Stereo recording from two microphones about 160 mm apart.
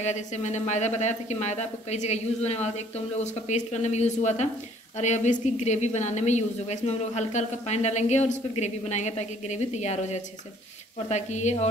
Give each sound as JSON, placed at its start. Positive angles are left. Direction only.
{"t": 0.0, "sound": "a woman's voice", "side_deg": 45}